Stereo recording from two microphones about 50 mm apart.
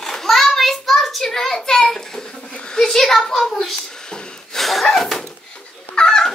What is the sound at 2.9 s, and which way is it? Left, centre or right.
Speech, centre.